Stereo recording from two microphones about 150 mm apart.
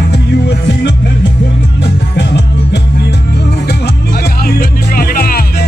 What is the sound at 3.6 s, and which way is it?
Music, 90° left.